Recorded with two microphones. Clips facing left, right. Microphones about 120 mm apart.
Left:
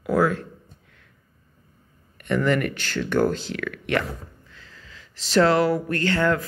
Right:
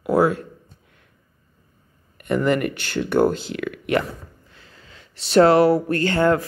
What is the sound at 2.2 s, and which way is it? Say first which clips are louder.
Speech: right 2 dB; 15° right (ahead or behind).